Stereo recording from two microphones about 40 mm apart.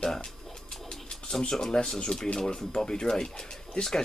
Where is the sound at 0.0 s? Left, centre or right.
Centre.